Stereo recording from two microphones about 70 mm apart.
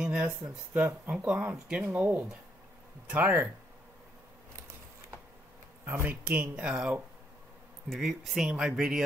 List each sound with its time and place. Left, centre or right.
0.0 s speech: centre
6.0 s speech: right
7.9 s speech: centre